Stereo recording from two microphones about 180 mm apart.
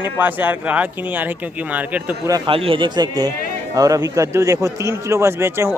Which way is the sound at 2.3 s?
30° right (ahead or behind).